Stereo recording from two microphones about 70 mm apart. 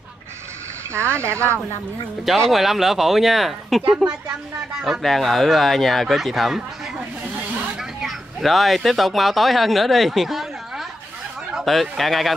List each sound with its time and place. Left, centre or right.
0.9 s speech: right
2.2 s speech: centre
4.8 s speech: centre
8.0 s speech: centre